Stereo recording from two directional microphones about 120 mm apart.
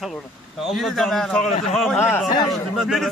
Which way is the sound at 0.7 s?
Centre (ahead or behind).